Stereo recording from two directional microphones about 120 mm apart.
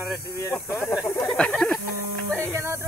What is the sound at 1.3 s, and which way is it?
Speech, 5° left (ahead or behind).